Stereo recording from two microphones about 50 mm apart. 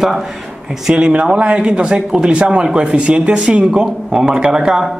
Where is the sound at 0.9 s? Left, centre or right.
Centre.